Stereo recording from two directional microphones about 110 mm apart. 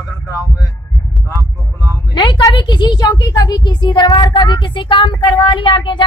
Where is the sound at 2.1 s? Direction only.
45° left (ahead or behind).